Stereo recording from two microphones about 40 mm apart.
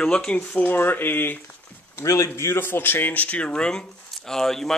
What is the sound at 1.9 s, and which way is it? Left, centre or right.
A man's voice, left.